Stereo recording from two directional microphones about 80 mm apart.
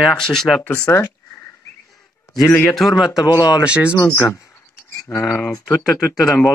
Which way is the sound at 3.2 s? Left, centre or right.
Left.